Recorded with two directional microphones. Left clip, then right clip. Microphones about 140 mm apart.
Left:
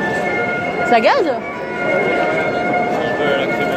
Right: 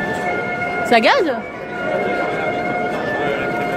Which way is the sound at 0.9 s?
55° right (ahead or behind).